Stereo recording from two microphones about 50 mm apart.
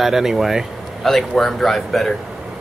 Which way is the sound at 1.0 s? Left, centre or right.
Centre.